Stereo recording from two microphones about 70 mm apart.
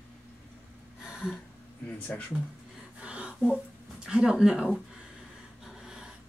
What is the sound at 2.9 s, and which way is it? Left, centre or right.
Gasp, centre.